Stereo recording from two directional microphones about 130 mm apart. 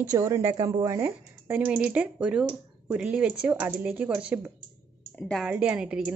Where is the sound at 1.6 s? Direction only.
10° right (ahead or behind).